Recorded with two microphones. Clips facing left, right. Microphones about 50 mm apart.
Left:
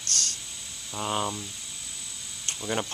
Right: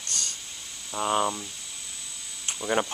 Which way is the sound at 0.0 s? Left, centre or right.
Centre.